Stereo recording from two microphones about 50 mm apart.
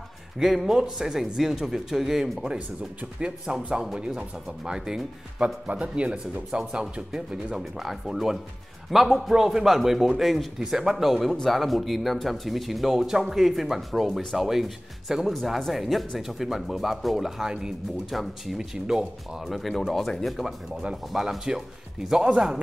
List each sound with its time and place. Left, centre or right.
0.4 s speech: centre
3.2 s speech: centre
5.7 s speech: right
7.5 s speech: centre
18.1 s speech: centre